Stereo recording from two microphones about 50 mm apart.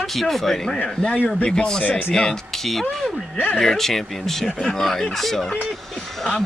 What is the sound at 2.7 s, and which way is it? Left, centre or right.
Speech, centre.